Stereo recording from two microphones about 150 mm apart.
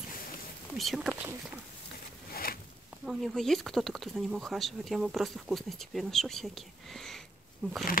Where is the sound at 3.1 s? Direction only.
Centre (ahead or behind).